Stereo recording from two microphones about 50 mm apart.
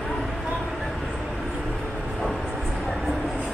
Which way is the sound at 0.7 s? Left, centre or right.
Centre.